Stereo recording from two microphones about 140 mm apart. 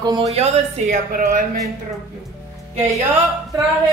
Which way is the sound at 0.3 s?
50° right (ahead or behind).